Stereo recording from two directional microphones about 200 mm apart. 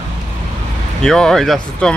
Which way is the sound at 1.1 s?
Centre (ahead or behind).